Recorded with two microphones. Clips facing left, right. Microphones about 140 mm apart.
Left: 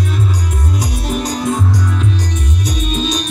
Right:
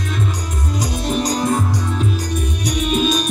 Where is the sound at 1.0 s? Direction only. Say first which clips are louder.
Right 2 dB; 5° left (ahead or behind).